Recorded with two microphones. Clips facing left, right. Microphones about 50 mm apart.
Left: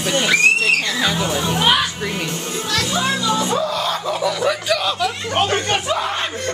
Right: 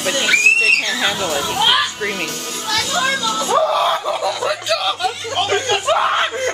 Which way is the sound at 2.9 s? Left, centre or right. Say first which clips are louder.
Right 1 dB; centre.